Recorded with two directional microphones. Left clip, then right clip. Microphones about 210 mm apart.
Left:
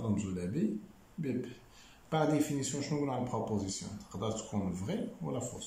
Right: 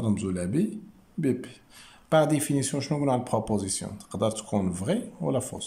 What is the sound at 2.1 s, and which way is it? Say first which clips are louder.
Speech: right 8 dB; 50° right (ahead or behind).